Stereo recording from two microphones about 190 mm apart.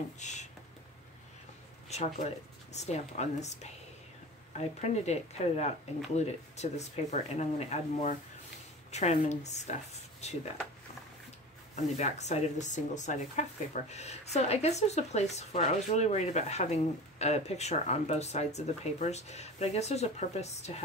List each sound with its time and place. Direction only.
0.2 s speech: 40° left (ahead or behind)
1.9 s speech: 35° left (ahead or behind)
4.6 s speech: 35° left (ahead or behind)
11.7 s speech: 35° left (ahead or behind)